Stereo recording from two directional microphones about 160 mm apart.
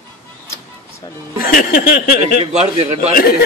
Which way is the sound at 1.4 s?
65° left (ahead or behind).